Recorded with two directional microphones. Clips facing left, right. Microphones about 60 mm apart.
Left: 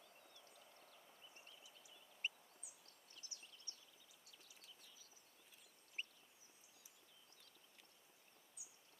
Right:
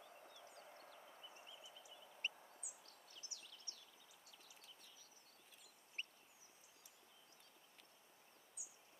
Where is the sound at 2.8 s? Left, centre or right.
Left.